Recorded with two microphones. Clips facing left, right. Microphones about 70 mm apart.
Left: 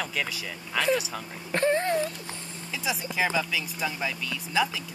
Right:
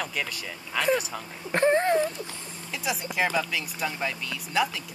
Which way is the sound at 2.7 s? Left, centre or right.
Centre.